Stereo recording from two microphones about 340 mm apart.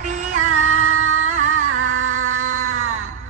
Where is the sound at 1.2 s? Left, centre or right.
Right.